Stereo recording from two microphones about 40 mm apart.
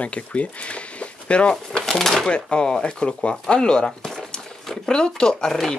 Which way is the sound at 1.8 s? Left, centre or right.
Centre.